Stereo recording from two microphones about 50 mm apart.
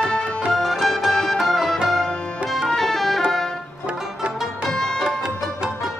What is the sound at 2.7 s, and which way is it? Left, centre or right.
Music, centre.